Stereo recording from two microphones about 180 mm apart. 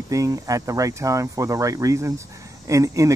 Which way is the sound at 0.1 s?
20° right (ahead or behind).